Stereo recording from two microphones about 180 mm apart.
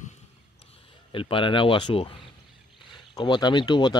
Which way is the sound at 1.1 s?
30° left (ahead or behind).